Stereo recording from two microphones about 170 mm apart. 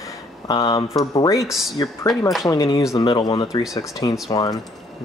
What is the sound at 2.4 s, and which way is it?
Speech, 20° left (ahead or behind).